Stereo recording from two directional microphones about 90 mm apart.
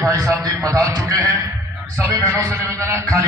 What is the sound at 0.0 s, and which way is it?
A man's voice, 40° right (ahead or behind).